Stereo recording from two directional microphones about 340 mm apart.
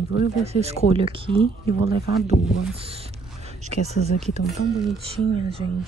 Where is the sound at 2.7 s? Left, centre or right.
Centre.